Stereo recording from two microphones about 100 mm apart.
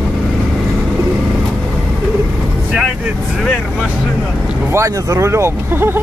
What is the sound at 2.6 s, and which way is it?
Vehicle, 15° right (ahead or behind).